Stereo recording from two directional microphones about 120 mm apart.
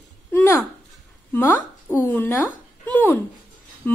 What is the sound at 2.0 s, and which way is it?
Speech, 15° left (ahead or behind).